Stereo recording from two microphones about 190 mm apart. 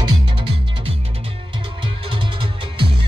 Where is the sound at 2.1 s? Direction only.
25° right (ahead or behind).